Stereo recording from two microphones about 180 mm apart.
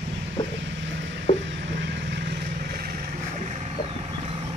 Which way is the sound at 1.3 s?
40° left (ahead or behind).